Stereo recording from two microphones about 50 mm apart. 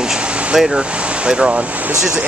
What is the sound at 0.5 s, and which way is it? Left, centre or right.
Speech, centre.